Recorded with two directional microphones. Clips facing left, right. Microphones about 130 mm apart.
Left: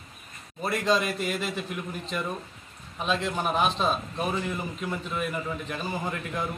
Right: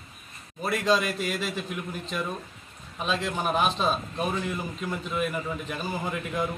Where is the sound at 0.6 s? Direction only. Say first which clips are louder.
Right 1 dB; centre (ahead or behind).